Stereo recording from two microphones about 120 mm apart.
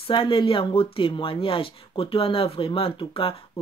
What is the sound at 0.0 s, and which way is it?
Speech, 45° left (ahead or behind).